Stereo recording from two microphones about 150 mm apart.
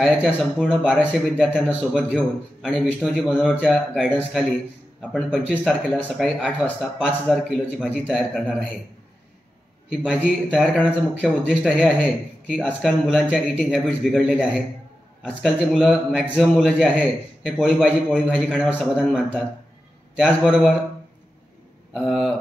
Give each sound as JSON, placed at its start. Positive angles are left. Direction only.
{"t": 0.0, "sound": "a man's voice", "side_deg": 0}
{"t": 0.9, "sound": "a man's voice", "side_deg": 5}
{"t": 10.5, "sound": "a man's voice", "side_deg": -5}
{"t": 13.6, "sound": "a man's voice", "side_deg": 5}
{"t": 21.9, "sound": "a man's voice", "side_deg": 0}